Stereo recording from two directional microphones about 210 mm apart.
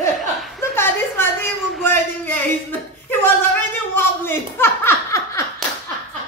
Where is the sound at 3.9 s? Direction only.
10° left (ahead or behind).